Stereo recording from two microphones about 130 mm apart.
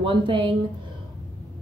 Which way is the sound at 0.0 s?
40° right (ahead or behind).